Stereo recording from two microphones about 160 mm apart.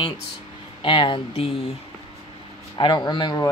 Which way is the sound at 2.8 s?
30° left (ahead or behind).